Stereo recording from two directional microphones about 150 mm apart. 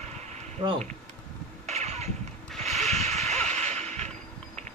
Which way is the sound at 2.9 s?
45° right (ahead or behind).